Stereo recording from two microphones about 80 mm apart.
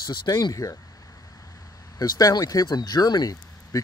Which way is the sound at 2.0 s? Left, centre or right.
Left.